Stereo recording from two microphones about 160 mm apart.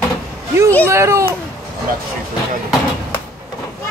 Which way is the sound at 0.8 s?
15° right (ahead or behind).